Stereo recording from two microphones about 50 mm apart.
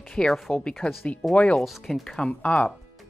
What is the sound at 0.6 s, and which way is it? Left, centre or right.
Speech, centre.